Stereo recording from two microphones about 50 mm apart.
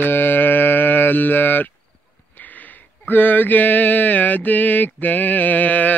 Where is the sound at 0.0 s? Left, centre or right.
Left.